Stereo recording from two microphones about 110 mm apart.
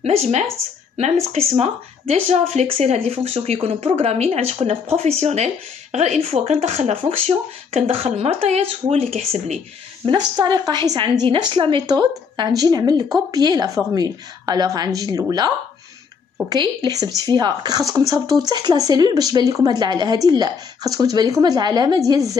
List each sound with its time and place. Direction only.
0.0 s speech: 90° right; by 9.6 s 70° right (ahead or behind)
10.0 s a woman's voice: 40° right (ahead or behind)